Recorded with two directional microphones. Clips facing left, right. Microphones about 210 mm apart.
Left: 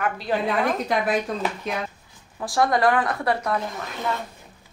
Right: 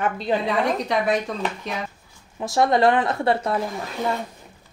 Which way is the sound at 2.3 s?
20° right (ahead or behind).